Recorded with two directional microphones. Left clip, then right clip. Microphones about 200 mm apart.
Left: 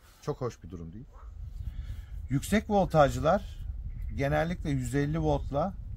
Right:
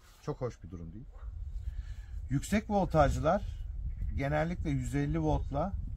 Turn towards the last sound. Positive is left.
turn(degrees=40)  # may be behind; listen again after turning